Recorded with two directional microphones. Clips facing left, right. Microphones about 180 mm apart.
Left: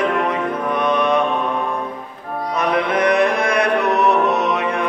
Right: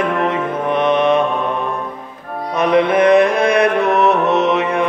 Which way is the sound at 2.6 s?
25° right (ahead or behind).